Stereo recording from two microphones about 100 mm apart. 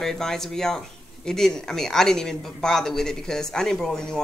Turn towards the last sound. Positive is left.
turn(degrees=5)  # may be behind; listen again after turning